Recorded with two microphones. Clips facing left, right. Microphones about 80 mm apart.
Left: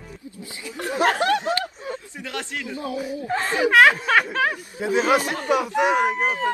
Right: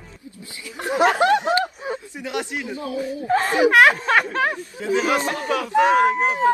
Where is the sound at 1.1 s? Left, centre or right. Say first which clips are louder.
Right 4 dB; right.